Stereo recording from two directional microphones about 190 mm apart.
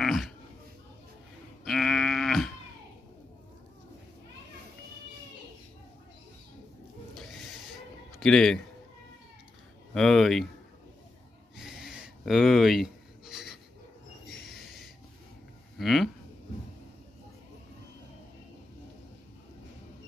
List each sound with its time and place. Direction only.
0.0 s a sound: centre (ahead or behind)
1.6 s livestock: centre (ahead or behind)
8.2 s a man's voice: 5° left (ahead or behind)
9.9 s speech: centre (ahead or behind)
11.5 s a sound: centre (ahead or behind)
15.8 s speech: centre (ahead or behind)